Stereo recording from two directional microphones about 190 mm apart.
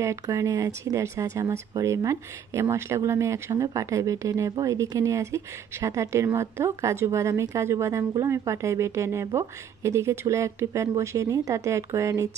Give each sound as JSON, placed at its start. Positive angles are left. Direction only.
{"t": 0.0, "sound": "speech", "side_deg": -15}